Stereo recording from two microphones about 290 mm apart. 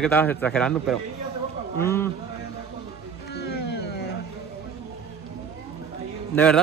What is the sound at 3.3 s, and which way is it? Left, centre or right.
Music, left.